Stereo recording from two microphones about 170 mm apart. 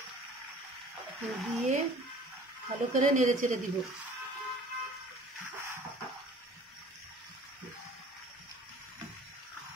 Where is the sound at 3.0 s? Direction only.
45° right (ahead or behind).